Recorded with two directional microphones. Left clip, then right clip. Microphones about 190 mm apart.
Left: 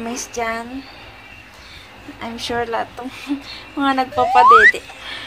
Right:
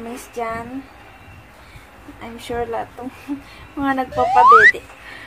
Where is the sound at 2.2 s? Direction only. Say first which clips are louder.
Left 3 dB; 5° left (ahead or behind).